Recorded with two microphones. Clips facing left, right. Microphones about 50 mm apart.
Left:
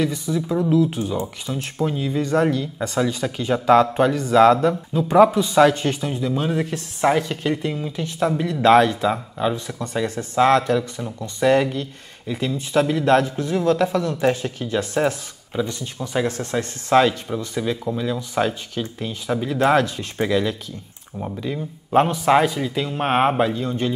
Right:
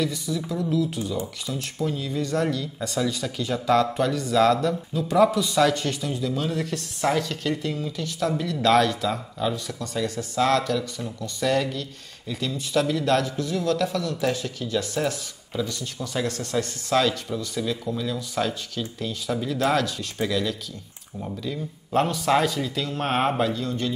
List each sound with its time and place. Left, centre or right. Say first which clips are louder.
0.0 s speech: left 4 dB; left